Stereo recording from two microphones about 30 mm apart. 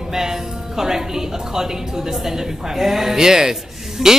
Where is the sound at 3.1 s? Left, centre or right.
Centre.